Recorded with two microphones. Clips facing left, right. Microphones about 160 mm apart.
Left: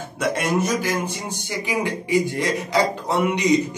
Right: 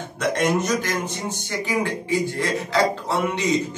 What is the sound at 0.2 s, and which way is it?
A man's voice, 5° left (ahead or behind).